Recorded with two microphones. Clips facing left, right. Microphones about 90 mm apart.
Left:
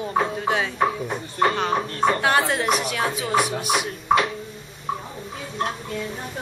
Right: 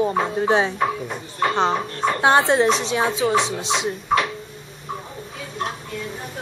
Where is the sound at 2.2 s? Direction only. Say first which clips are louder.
Right 5 dB; 25° right (ahead or behind).